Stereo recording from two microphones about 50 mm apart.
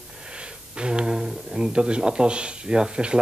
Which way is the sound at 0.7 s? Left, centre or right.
Centre.